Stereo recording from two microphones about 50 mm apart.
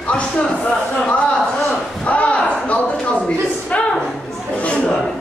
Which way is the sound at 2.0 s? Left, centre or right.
Left.